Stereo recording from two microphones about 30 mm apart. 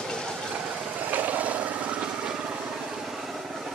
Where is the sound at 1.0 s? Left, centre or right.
Right.